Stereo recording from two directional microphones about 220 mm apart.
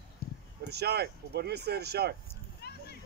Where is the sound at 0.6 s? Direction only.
45° right (ahead or behind).